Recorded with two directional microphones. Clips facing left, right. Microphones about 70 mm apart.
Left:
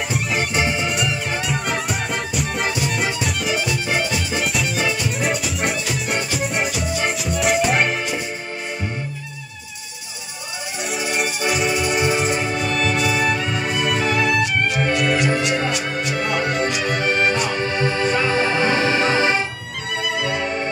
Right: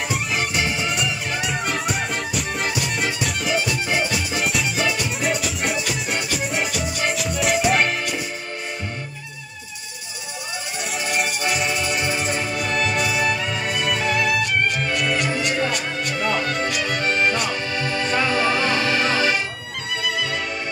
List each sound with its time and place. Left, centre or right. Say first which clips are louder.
0.8 s music: left 2 dB; centre
10.9 s music: left 1 dB; centre
12.5 s music: left 1 dB; centre
17.0 s music: left 1 dB; left
19.9 s music: left 2 dB; centre